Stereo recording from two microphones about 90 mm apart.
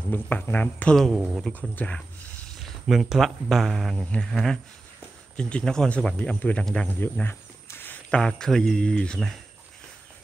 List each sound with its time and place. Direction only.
0.1 s speech: 20° left (ahead or behind)
0.9 s speech: 5° left (ahead or behind)
2.6 s speech: 5° right (ahead or behind)
7.0 s cricket: 25° left (ahead or behind)
8.1 s speech: 5° left (ahead or behind)